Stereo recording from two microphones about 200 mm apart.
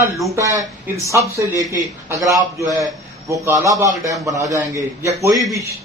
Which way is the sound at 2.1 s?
15° right (ahead or behind).